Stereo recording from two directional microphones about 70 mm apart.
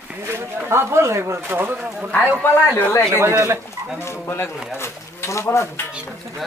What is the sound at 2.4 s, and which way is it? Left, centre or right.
Speech, left.